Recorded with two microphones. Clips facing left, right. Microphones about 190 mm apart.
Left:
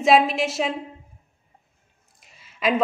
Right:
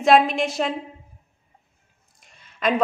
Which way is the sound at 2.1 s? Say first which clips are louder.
Even; centre (ahead or behind).